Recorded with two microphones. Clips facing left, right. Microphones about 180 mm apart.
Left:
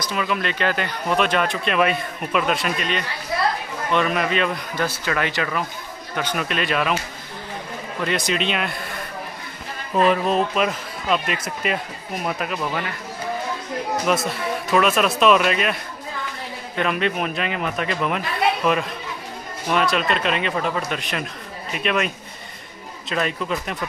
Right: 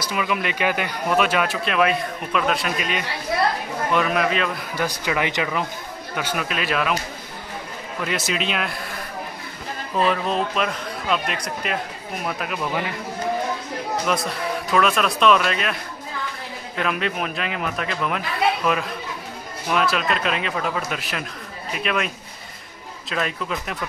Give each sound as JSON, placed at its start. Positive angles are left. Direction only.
{"t": 0.0, "sound": "speech", "side_deg": -10}
{"t": 4.8, "sound": "speech", "side_deg": -15}
{"t": 6.1, "sound": "speech", "side_deg": -5}
{"t": 8.0, "sound": "speech", "side_deg": -5}
{"t": 10.0, "sound": "speech", "side_deg": 5}
{"t": 14.0, "sound": "speech", "side_deg": 5}